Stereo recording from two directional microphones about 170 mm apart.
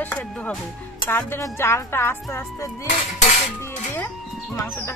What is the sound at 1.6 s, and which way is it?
Speech, 15° left (ahead or behind).